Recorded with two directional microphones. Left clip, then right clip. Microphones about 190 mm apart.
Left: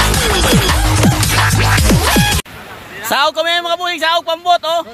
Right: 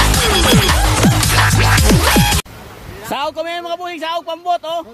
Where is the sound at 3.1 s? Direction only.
10° left (ahead or behind).